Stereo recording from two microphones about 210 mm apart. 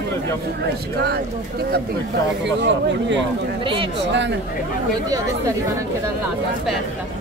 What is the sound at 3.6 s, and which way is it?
Speech, 25° right (ahead or behind).